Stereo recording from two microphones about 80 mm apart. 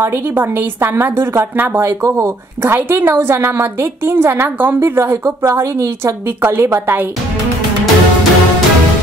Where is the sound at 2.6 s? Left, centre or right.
Right.